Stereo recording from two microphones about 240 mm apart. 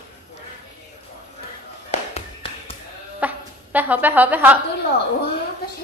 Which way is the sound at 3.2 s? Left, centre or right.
Centre.